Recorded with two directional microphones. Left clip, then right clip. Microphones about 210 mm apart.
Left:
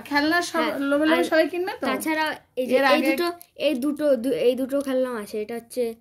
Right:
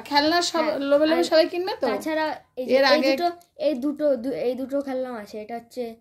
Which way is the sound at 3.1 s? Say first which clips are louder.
Right 1 dB; 55° left (ahead or behind).